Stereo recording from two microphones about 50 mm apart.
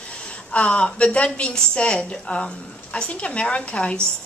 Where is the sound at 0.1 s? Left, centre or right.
Left.